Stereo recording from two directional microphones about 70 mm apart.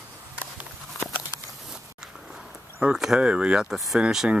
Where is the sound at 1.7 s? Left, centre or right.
Centre.